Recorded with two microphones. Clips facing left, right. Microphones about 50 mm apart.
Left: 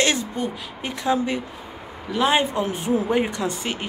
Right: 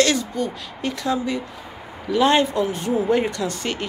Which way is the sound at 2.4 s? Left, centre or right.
Left.